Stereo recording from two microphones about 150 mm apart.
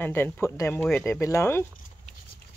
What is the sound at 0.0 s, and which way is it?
Speech, 15° left (ahead or behind).